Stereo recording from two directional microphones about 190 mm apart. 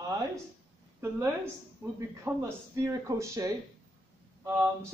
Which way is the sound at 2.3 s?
15° right (ahead or behind).